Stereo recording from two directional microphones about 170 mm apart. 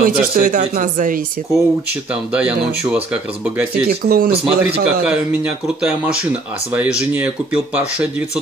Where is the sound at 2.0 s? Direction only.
5° right (ahead or behind).